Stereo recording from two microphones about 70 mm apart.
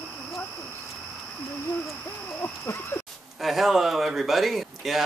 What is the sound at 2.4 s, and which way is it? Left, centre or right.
Speech, left.